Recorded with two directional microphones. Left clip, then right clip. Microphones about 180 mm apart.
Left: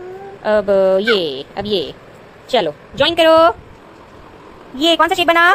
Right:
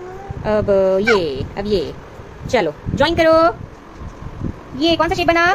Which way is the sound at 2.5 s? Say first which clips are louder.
Left 1 dB; 5° right (ahead or behind).